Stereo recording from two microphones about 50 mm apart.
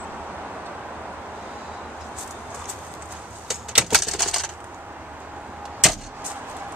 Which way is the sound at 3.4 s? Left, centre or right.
Centre.